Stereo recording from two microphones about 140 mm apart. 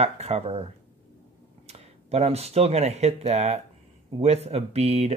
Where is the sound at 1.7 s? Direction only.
50° right (ahead or behind).